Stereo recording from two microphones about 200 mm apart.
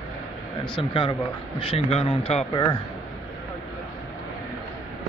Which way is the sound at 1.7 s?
30° left (ahead or behind).